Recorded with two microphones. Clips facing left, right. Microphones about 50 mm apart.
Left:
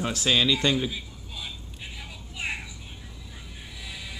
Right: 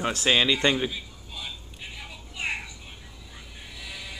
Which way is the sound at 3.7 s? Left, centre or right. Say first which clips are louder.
Right 1 dB; centre.